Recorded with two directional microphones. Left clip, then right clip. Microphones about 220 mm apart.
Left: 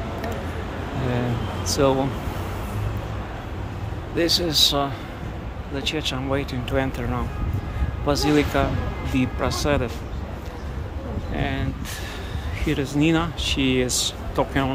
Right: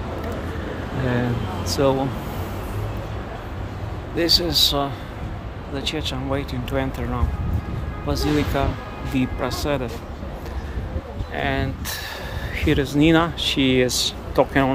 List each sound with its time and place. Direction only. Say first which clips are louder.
1.7 s speech: even; centre (ahead or behind)
4.2 s speech: right 1 dB; centre (ahead or behind)
8.1 s speech: left 2 dB; 5° left (ahead or behind)
11.3 s speech: right 5 dB; 20° right (ahead or behind)
12.5 s speech: right 4 dB; 5° right (ahead or behind)